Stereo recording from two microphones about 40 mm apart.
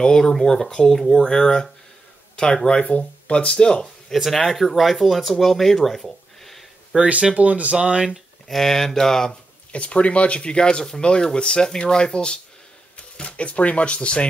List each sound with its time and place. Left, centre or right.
0.0 s speech: centre
1.1 s speech: centre
4.1 s speech: centre
7.0 s speech: right
7.7 s speech: right
8.5 s speech: centre
9.7 s speech: left